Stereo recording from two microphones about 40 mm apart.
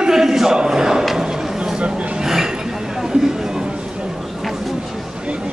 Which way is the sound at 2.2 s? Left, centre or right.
Centre.